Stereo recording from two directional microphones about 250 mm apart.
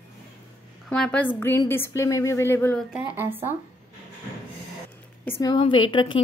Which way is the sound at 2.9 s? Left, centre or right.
Centre.